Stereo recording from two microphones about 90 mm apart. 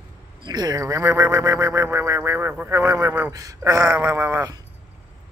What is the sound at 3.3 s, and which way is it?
Speech, 40° right (ahead or behind).